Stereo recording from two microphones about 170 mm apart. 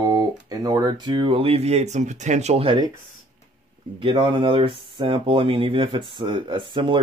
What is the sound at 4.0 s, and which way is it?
Speech, 30° right (ahead or behind).